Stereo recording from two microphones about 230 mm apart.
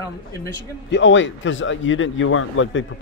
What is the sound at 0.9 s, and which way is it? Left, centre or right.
Speech, left.